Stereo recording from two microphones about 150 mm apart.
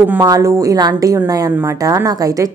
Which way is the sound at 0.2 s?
25° right (ahead or behind).